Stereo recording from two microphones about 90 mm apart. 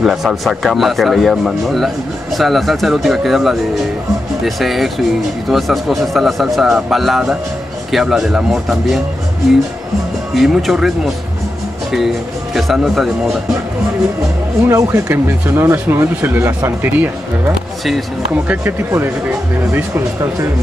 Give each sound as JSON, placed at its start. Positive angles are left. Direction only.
{"t": 0.0, "sound": "speech", "side_deg": -5}
{"t": 4.6, "sound": "speech", "side_deg": 0}
{"t": 10.3, "sound": "speech", "side_deg": 0}
{"t": 12.5, "sound": "speech", "side_deg": -5}
{"t": 14.7, "sound": "speech", "side_deg": -30}
{"t": 18.6, "sound": "speech", "side_deg": -30}